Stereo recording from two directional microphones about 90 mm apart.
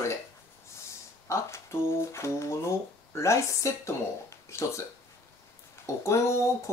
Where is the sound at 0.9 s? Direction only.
30° left (ahead or behind).